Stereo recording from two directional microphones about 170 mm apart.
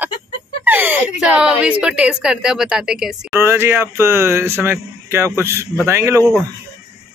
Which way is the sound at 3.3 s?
15° right (ahead or behind).